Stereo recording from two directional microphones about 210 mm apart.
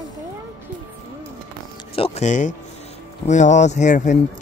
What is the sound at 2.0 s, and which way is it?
Speech, 35° left (ahead or behind).